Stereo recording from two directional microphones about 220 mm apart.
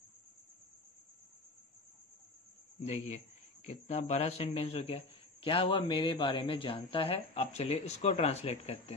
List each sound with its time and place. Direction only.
2.8 s a man's voice: 30° left (ahead or behind)